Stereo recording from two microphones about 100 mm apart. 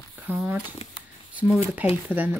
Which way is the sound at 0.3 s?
20° right (ahead or behind).